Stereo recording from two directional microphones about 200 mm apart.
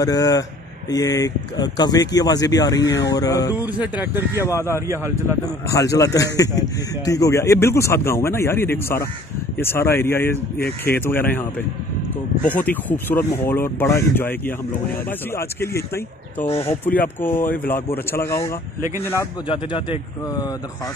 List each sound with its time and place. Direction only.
0.0 s speech: 20° left (ahead or behind)
3.8 s speech: 10° right (ahead or behind)
4.3 s speech: 15° left (ahead or behind)
4.8 s speech: 15° right (ahead or behind)
5.4 s speech: 15° left (ahead or behind)
12.6 s speech: 10° left (ahead or behind)
16.9 s speech: 40° left (ahead or behind)
17.2 s speech: 10° left (ahead or behind)
19.4 s speech: 25° left (ahead or behind)